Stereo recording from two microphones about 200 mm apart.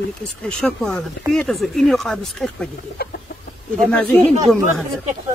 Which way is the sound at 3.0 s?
50° left (ahead or behind).